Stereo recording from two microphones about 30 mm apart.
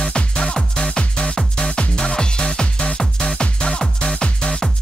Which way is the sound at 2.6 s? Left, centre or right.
Left.